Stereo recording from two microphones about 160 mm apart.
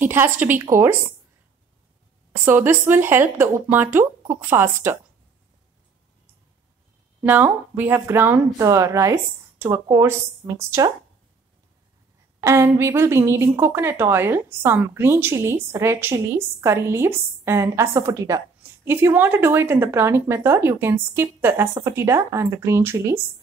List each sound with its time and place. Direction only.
0.0 s a woman's voice: 15° right (ahead or behind)
2.4 s a woman's voice: 15° right (ahead or behind)
7.2 s a woman's voice: 10° right (ahead or behind)
12.4 s a woman's voice: 15° right (ahead or behind)